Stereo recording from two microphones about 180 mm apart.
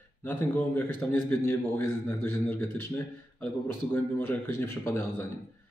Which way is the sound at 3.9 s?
10° left (ahead or behind).